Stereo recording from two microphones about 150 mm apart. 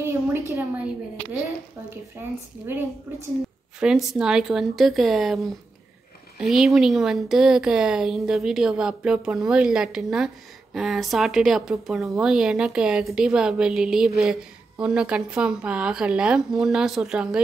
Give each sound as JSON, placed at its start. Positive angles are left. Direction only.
{"t": 0.0, "sound": "a sound", "side_deg": -15}
{"t": 2.6, "sound": "speech", "side_deg": -15}
{"t": 3.8, "sound": "speech", "side_deg": -5}